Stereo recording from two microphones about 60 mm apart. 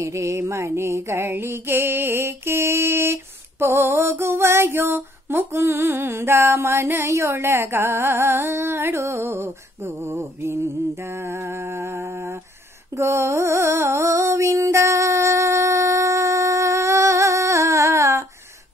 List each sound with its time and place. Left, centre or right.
0.0 s mantra: right
9.9 s mantra: right
11.5 s a sound: right